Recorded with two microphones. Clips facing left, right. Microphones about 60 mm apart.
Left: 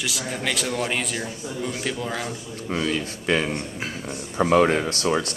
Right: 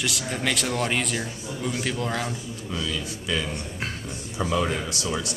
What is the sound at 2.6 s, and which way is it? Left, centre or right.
Speech, left.